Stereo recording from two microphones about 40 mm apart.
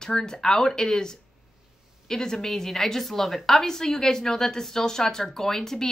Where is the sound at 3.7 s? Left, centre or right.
Centre.